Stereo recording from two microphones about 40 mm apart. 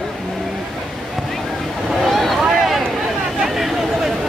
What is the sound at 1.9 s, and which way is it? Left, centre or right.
Boat, centre.